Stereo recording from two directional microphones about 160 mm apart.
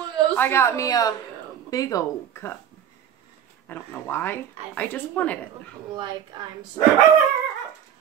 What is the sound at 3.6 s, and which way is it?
Speech, 10° left (ahead or behind).